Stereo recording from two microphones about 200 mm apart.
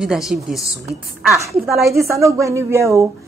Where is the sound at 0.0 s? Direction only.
Centre (ahead or behind).